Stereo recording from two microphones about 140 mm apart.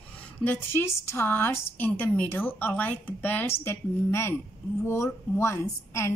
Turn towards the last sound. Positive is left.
turn(degrees=20)  # may be behind; listen again after turning